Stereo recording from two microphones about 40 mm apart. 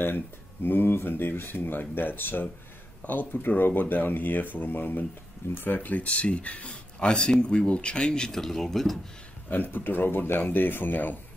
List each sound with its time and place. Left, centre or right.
0.7 s speech: left; by 8.4 s centre
8.4 s speech: centre
9.5 s speech: left